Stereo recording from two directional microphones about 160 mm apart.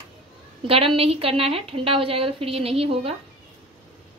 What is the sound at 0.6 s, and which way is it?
A woman's voice, 35° right (ahead or behind).